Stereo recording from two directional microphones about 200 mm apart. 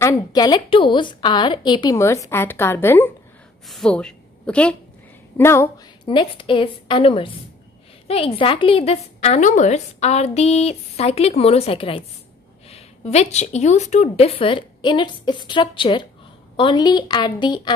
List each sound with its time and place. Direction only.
0.0 s a woman's voice: 15° left (ahead or behind)
6.0 s a woman's voice: 25° left (ahead or behind)